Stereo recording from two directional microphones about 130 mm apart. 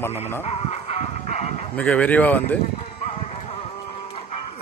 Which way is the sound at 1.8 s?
10° left (ahead or behind).